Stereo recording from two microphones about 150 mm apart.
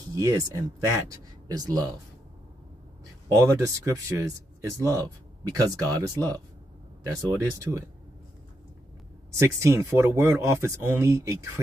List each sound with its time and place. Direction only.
0.1 s speech: 25° right (ahead or behind)
3.3 s speech: 20° right (ahead or behind)
9.4 s speech: 20° right (ahead or behind)